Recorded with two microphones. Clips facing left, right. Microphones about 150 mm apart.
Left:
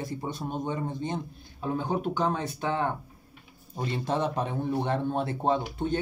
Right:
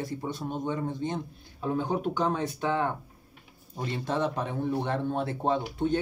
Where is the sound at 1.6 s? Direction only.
Centre (ahead or behind).